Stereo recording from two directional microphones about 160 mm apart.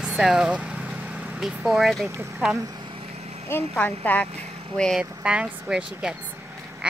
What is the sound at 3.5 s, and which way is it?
Speech, 10° left (ahead or behind).